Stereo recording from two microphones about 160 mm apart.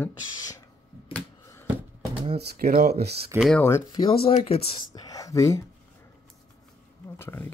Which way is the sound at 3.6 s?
15° left (ahead or behind).